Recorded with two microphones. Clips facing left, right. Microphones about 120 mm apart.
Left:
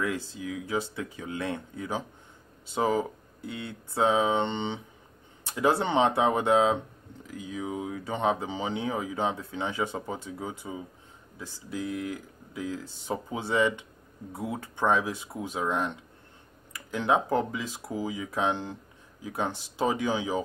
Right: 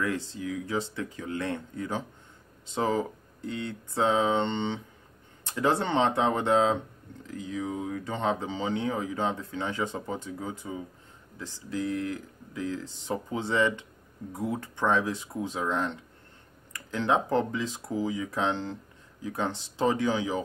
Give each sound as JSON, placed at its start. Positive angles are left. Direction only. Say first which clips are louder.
{"t": 0.3, "sound": "speech", "louder": "even", "side_deg": 15}